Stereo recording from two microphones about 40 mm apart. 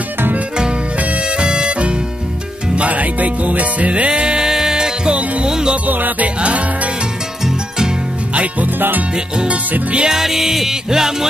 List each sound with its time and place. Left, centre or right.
1.4 s music: right
2.7 s music: right; by 5.8 s centre
5.9 s music: right
6.2 s music: right
8.7 s music: right
9.1 s music: right
10.0 s music: centre